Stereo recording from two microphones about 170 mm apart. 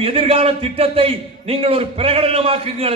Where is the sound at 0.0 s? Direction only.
35° right (ahead or behind).